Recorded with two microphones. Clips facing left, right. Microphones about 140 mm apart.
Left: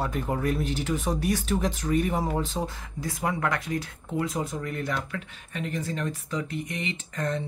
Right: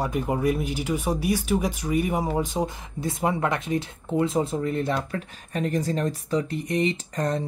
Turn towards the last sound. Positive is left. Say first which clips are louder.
# right 4 dB
turn(degrees=-35)  # may be behind; listen again after turning